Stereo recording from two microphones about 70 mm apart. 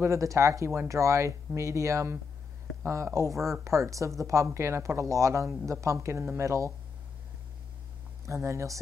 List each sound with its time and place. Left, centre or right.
0.0 s speech: right
8.3 s speech: right